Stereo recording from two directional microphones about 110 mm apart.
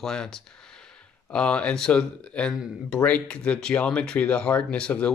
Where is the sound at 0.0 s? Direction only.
5° left (ahead or behind).